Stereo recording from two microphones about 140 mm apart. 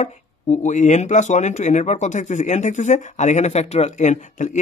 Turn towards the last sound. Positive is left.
turn(degrees=60)  # may be behind; listen again after turning